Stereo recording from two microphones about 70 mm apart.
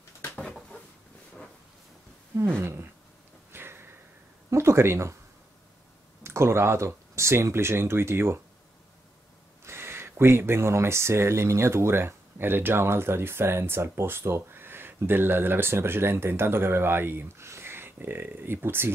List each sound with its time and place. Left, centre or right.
2.4 s speech: right
3.5 s a sound: right
4.5 s speech: right
6.2 s speech: right
9.7 s speech: right